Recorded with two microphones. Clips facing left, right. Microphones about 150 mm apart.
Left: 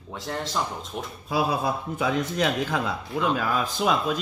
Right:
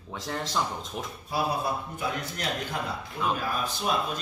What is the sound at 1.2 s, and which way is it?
A man's voice, 90° left.